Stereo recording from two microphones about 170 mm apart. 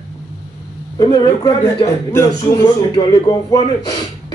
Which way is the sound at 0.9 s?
25° left (ahead or behind).